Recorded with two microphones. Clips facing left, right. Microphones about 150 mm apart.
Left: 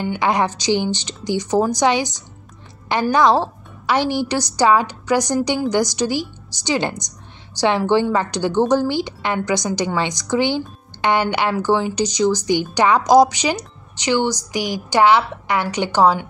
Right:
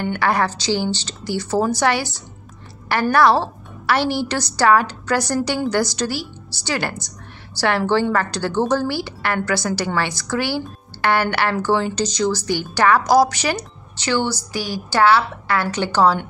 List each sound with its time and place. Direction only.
0.0 s a woman's voice: 15° left (ahead or behind)